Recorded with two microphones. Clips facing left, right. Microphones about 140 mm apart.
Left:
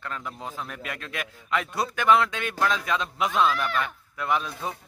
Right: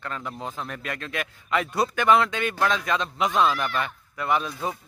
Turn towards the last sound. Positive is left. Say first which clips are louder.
# right 2 dB
turn(degrees=0)  # may be behind; listen again after turning